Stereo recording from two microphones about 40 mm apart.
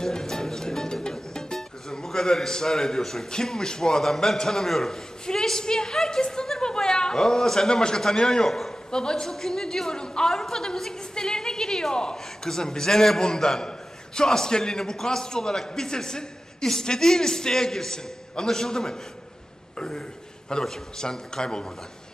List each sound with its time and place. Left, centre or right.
0.0 s speech: centre
8.9 s a woman's voice: centre
20.6 s a woman's voice: centre